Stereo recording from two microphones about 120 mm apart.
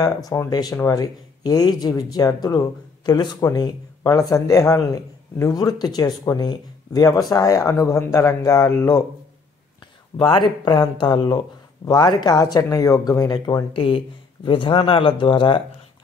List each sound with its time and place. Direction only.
0.0 s speech: 30° left (ahead or behind)
10.1 s speech: 40° left (ahead or behind)
13.7 s speech: 45° left (ahead or behind)